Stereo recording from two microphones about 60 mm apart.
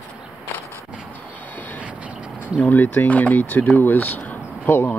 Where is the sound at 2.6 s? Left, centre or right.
Left.